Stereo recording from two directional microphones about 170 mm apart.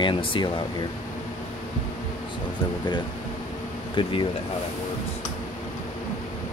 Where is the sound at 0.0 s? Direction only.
30° left (ahead or behind).